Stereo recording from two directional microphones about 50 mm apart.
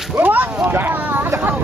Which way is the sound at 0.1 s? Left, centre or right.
Right.